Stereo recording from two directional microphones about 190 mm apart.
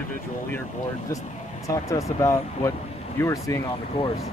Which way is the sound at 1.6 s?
15° left (ahead or behind).